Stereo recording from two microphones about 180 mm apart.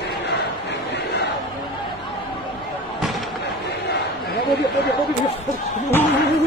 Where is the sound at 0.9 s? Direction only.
65° left (ahead or behind).